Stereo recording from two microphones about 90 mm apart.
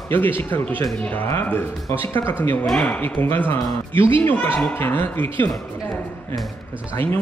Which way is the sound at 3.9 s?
75° right (ahead or behind).